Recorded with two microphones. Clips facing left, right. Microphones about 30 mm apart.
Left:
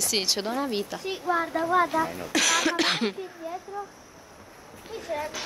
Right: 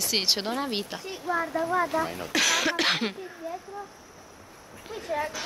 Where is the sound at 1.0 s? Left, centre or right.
Left.